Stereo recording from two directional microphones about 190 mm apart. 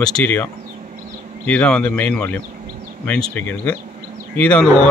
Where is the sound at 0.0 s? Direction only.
5° left (ahead or behind).